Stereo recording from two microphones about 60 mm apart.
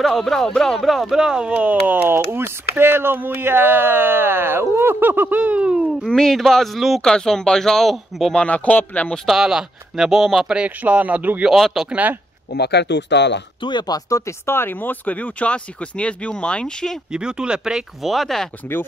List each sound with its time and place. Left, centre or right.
0.0 s speech: centre
1.5 s speech: right
6.0 s speech: centre
7.0 s speech: centre
8.4 s speech: left
9.3 s speech: centre
10.5 s speech: right
11.6 s speech: centre
11.9 s speech: right
13.8 s speech: left
14.4 s speech: left; by 17.0 s centre
17.1 s speech: centre